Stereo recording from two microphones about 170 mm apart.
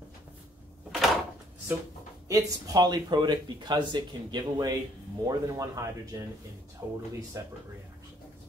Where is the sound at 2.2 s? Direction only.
20° right (ahead or behind).